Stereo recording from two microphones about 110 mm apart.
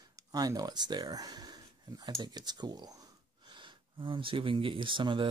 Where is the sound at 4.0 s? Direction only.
50° right (ahead or behind).